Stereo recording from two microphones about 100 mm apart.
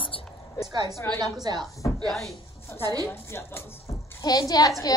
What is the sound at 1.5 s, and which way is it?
Speech, 45° right (ahead or behind).